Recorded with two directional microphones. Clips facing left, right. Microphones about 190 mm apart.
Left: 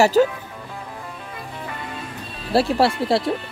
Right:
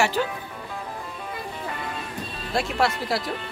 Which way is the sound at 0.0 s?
40° left (ahead or behind).